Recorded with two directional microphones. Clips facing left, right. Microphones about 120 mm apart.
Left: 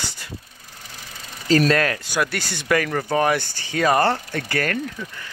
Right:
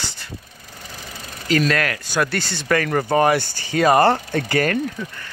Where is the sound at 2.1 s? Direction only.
10° left (ahead or behind).